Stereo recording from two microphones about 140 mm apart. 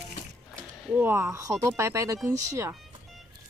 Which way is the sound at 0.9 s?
15° right (ahead or behind).